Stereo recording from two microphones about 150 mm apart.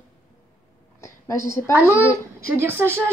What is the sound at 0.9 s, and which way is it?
Speech, 20° left (ahead or behind).